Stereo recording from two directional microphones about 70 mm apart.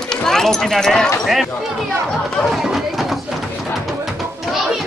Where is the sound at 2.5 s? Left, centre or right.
Centre.